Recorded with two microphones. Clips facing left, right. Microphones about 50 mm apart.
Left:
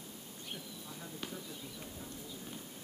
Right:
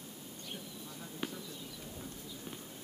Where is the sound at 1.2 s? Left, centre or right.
Centre.